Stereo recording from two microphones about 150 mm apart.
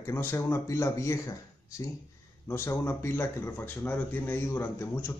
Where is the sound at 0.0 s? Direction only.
15° left (ahead or behind).